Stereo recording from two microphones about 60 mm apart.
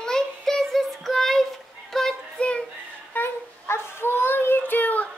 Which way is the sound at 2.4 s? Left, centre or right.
Centre.